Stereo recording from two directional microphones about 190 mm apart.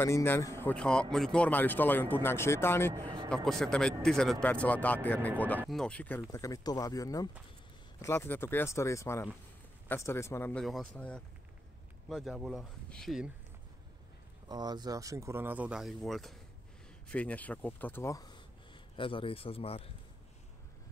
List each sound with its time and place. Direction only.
0.0 s speech: 15° left (ahead or behind)
10.6 s speech: centre (ahead or behind)
14.5 s speech: 20° right (ahead or behind); by 19.9 s 30° left (ahead or behind)